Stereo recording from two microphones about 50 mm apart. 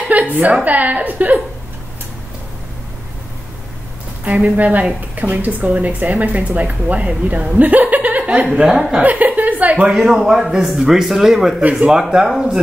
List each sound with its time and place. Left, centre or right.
0.1 s a woman's voice: right
4.2 s speech: right
8.5 s a man's voice: centre
9.0 s speech: right
9.8 s a man's voice: centre